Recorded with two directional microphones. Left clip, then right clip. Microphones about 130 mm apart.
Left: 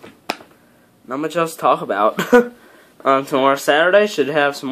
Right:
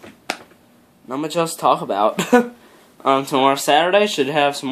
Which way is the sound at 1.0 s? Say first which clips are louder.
Left 1 dB; 10° right (ahead or behind).